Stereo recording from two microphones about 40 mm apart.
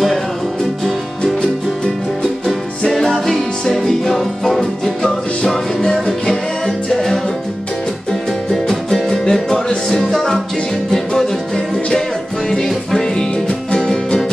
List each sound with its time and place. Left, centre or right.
1.2 s music: centre
2.9 s music: centre
5.9 s music: centre